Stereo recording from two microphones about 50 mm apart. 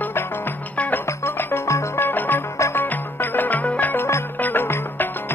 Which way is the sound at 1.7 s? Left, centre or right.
Left.